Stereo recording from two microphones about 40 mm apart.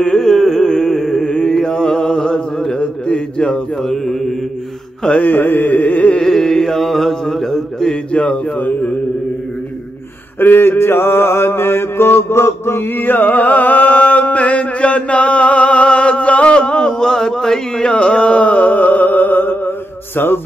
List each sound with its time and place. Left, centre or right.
0.0 s carnatic music: centre
1.2 s mantra: left
2.8 s mantra: left; by 4.4 s centre
5.2 s carnatic music: left
6.1 s carnatic music: centre
7.9 s a man's voice: left
10.4 s mantra: left
16.5 s a sound: left
17.9 s music: left